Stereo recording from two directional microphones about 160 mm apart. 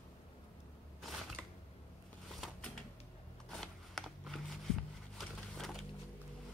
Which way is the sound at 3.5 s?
Centre (ahead or behind).